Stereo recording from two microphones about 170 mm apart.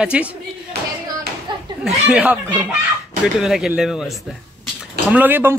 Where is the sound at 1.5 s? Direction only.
25° right (ahead or behind).